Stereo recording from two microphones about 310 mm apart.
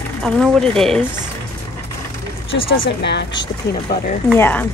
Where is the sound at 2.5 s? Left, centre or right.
Centre.